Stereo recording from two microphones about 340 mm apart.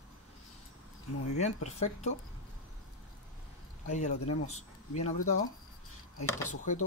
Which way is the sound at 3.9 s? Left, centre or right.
Left.